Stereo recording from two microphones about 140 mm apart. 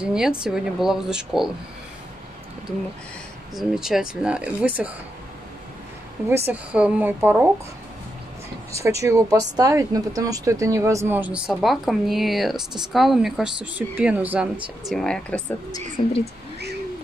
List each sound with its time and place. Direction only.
0.0 s speech: 5° right (ahead or behind)
3.5 s speech: centre (ahead or behind)
6.2 s speech: 15° right (ahead or behind)
8.7 s speech: 20° right (ahead or behind)
14.9 s speech: 5° left (ahead or behind)
16.0 s speech: 45° left (ahead or behind)